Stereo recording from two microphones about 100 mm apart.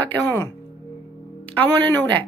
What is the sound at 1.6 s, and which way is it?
Speech, 20° left (ahead or behind).